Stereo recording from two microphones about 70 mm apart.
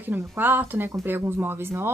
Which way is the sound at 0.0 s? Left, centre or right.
Right.